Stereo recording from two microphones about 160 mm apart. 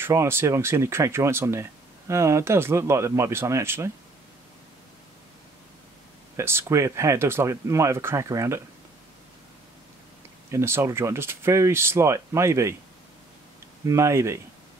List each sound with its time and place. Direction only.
0.0 s speech: 15° right (ahead or behind)
6.3 s speech: 15° right (ahead or behind)
10.5 s speech: 15° right (ahead or behind)
13.8 s speech: 20° right (ahead or behind)